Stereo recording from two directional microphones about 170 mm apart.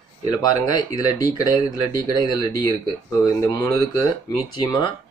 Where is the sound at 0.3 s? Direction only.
25° left (ahead or behind).